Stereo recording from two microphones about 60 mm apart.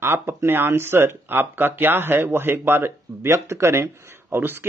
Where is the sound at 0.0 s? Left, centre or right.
Right.